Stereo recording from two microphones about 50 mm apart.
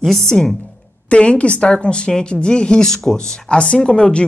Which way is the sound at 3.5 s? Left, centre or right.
Left.